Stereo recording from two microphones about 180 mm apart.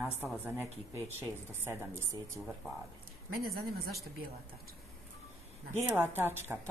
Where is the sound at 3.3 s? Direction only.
55° right (ahead or behind).